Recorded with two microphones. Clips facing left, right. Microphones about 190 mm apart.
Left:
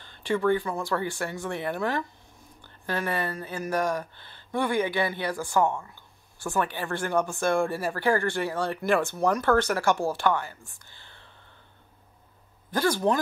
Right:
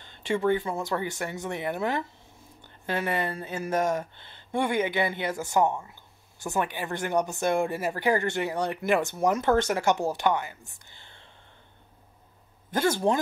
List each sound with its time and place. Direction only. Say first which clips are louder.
0.0 s speech: left 1 dB; 20° right (ahead or behind)
12.7 s speech: even; 25° right (ahead or behind)